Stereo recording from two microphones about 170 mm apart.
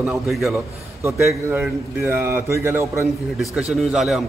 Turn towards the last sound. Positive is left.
turn(degrees=0)  # may be behind; listen again after turning